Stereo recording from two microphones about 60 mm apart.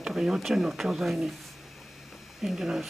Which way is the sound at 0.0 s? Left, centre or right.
Centre.